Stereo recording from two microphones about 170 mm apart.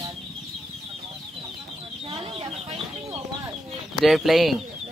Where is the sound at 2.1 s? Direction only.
30° right (ahead or behind).